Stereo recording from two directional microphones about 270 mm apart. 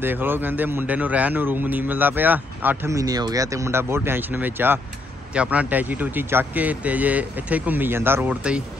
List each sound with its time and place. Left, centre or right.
0.0 s speech: centre